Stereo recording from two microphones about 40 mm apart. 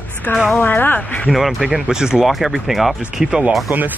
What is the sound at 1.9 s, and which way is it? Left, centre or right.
Speech, centre.